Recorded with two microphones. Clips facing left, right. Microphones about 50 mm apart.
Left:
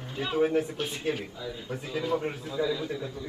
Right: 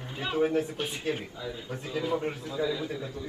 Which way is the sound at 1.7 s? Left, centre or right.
Centre.